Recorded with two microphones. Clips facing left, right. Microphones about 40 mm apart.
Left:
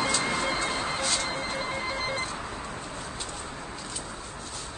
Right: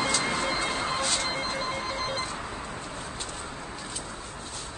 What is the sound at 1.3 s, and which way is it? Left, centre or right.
Music, centre.